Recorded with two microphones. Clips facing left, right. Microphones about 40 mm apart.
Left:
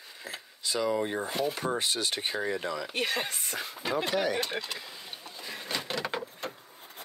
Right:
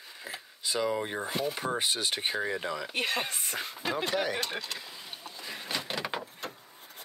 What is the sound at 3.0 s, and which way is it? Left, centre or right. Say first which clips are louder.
Speech: even; right.